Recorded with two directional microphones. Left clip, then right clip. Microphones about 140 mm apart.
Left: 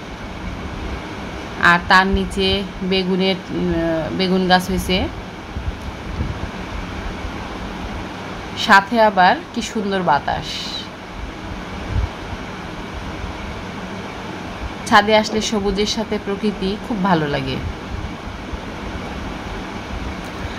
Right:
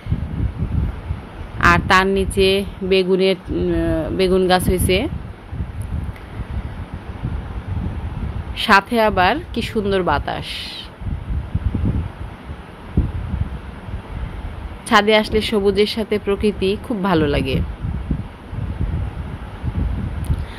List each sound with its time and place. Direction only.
1.6 s speech: 50° right (ahead or behind)
8.5 s speech: 50° right (ahead or behind)
14.9 s speech: 50° right (ahead or behind)